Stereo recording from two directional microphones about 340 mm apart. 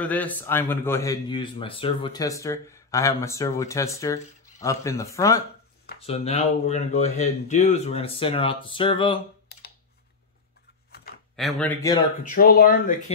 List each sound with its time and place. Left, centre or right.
0.0 s speech: centre
11.3 s speech: centre
12.2 s speech: left